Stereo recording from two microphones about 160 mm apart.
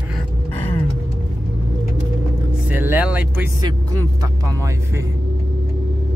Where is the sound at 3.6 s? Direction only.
25° right (ahead or behind).